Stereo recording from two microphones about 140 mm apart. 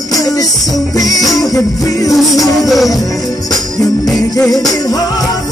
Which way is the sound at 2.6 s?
Centre (ahead or behind).